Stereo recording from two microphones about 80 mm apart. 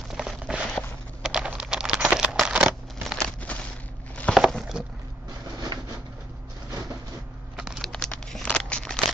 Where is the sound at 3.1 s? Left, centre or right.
Centre.